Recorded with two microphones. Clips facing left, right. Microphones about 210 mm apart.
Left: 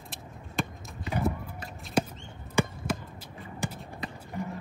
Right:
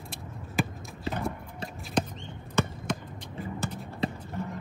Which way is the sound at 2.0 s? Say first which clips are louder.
Left 1 dB; 10° left (ahead or behind).